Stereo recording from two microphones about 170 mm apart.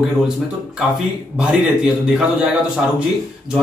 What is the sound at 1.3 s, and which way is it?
Speech, 5° right (ahead or behind).